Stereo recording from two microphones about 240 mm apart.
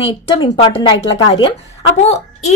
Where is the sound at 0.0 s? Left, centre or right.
Centre.